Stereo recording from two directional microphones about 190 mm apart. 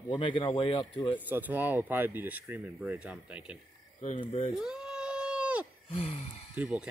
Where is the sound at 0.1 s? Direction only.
25° left (ahead or behind).